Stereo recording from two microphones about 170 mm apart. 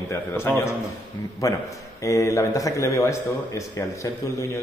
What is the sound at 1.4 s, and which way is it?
A man's voice, 15° left (ahead or behind).